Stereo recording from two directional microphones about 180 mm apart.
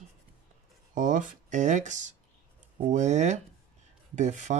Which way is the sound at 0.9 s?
45° right (ahead or behind).